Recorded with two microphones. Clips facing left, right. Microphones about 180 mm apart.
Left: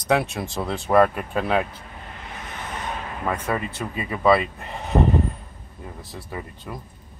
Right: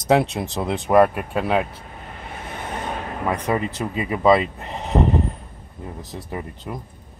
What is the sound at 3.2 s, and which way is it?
Speech, 15° right (ahead or behind).